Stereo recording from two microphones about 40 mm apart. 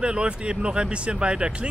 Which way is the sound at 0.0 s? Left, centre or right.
Right.